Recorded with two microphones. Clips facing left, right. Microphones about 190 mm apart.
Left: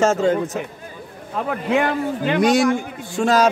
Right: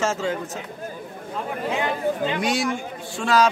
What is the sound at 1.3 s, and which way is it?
Speech, 65° left (ahead or behind).